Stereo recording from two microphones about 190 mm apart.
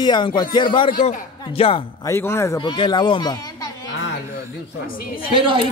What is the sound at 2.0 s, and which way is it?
A man's voice, 15° left (ahead or behind).